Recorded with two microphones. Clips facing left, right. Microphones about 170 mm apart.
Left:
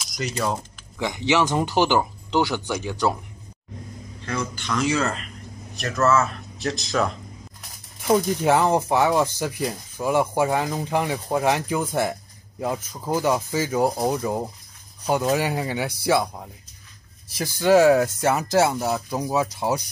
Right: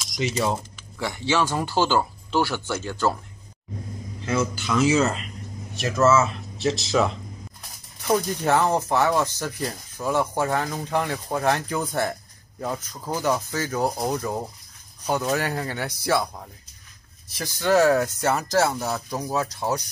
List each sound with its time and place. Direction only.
0.0 s speech: centre (ahead or behind)
0.9 s speech: 15° left (ahead or behind)
4.3 s speech: 5° right (ahead or behind)
8.1 s speech: 10° left (ahead or behind)
17.4 s speech: 10° left (ahead or behind)